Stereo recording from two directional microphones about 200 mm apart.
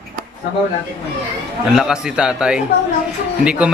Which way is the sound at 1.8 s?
5° right (ahead or behind).